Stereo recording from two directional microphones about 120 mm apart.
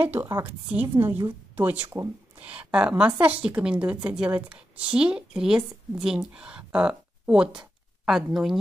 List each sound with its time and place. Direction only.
0.0 s a woman's voice: 15° right (ahead or behind)